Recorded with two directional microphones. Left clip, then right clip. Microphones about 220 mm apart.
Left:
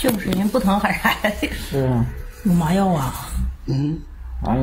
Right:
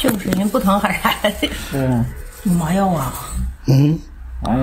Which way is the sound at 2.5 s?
15° left (ahead or behind).